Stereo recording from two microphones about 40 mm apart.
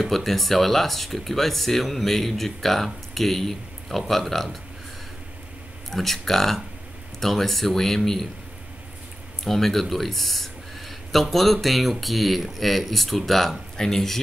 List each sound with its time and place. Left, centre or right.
0.0 s speech: centre
5.9 s speech: centre
9.4 s speech: centre